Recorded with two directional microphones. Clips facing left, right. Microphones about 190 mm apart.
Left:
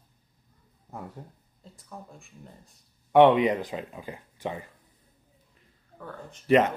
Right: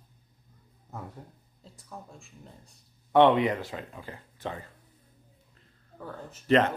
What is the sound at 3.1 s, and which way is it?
Speech, 15° left (ahead or behind).